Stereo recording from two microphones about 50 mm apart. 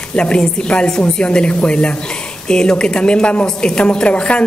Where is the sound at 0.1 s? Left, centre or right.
Left.